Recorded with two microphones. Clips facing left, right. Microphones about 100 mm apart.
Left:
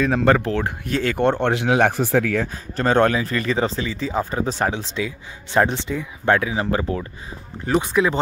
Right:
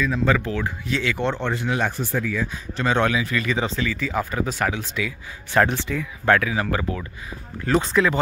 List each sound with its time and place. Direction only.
0.0 s speech: 60° left (ahead or behind)
1.5 s speech: 85° left
2.4 s speech: 40° left (ahead or behind)
7.6 s speech: 15° left (ahead or behind)